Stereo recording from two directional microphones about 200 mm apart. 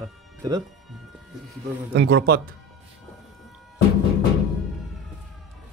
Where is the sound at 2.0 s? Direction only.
60° right (ahead or behind).